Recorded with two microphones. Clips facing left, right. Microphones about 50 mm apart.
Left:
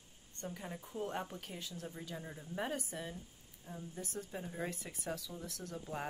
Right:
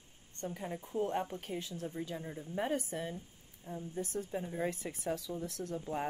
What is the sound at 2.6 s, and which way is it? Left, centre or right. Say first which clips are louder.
Speech: right 5 dB; right.